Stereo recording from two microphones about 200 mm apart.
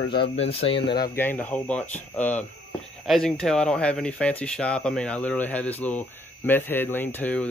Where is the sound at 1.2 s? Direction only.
10° left (ahead or behind).